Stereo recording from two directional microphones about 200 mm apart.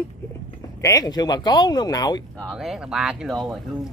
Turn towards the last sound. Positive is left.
turn(degrees=0)  # may be behind; listen again after turning